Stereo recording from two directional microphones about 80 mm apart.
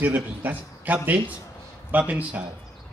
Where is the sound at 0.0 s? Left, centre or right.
Right.